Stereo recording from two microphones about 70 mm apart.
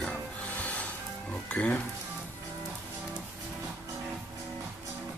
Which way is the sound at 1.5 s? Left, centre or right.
Centre.